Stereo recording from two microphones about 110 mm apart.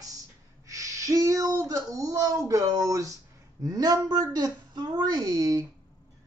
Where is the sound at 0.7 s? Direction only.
30° right (ahead or behind).